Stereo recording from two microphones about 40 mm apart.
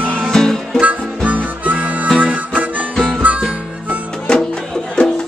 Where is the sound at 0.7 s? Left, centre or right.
Right.